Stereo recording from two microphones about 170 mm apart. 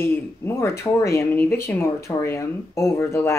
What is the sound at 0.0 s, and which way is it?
Speech, 15° left (ahead or behind).